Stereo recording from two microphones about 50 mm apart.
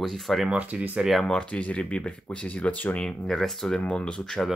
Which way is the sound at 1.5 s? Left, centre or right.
Left.